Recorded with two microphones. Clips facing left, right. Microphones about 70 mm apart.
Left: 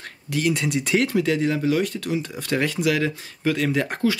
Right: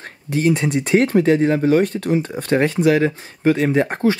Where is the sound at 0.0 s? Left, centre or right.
Right.